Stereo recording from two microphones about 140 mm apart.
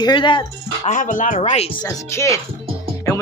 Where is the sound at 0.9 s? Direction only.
65° left (ahead or behind).